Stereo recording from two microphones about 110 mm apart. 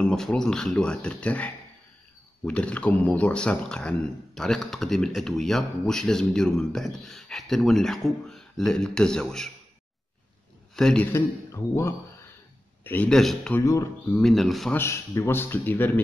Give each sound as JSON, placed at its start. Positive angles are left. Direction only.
{"t": 0.0, "sound": "speech", "side_deg": 5}
{"t": 10.8, "sound": "speech", "side_deg": 5}
{"t": 11.1, "sound": "a man's voice", "side_deg": 25}
{"t": 13.1, "sound": "speech", "side_deg": 5}
{"t": 14.7, "sound": "a man's voice", "side_deg": 25}